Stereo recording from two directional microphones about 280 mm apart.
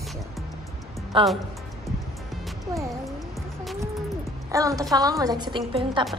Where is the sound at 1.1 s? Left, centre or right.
Centre.